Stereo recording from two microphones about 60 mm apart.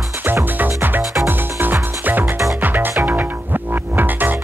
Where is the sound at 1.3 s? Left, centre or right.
Right.